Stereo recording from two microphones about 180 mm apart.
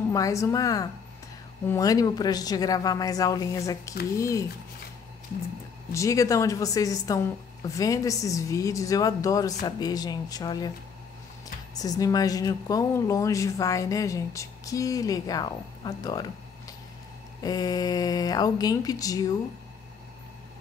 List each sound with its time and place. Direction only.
0.1 s a woman's voice: 20° left (ahead or behind)
5.9 s a woman's voice: 15° left (ahead or behind)
11.8 s speech: 20° left (ahead or behind)